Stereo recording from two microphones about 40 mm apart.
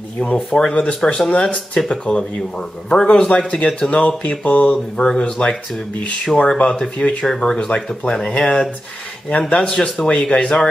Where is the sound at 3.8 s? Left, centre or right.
Left.